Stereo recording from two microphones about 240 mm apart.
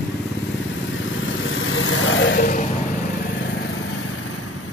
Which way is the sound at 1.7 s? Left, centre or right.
Left.